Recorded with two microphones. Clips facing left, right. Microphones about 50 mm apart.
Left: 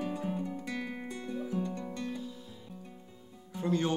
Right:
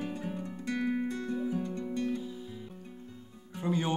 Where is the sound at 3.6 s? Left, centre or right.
Centre.